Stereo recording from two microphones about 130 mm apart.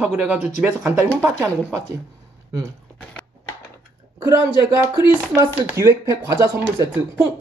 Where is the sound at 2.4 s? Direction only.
25° right (ahead or behind).